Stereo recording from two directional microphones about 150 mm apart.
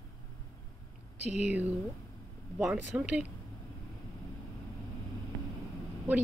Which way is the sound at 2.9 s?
10° right (ahead or behind).